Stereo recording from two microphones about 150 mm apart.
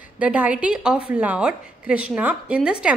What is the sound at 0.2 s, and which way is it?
A woman's voice, 10° right (ahead or behind).